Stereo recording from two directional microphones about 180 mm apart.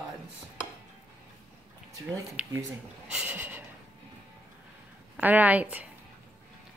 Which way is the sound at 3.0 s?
10° right (ahead or behind).